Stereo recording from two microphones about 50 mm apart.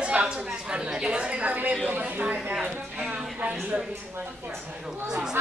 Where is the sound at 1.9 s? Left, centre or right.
Right.